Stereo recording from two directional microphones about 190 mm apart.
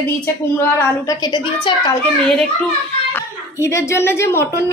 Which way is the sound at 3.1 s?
15° left (ahead or behind).